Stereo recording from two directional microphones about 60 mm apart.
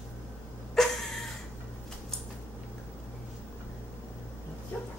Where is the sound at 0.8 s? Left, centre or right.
Centre.